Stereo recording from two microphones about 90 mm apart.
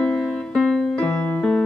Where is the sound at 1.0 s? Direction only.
15° left (ahead or behind).